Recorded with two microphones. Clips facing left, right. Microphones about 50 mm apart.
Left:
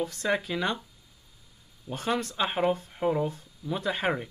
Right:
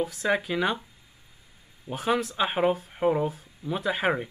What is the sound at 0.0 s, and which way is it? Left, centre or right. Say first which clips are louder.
Speech: right 2 dB; centre.